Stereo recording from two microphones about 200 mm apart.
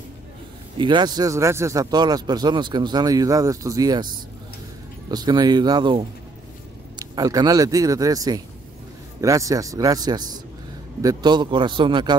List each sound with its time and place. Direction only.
0.7 s speech: 20° right (ahead or behind)
5.1 s speech: 20° right (ahead or behind)
7.2 s speech: 20° right (ahead or behind)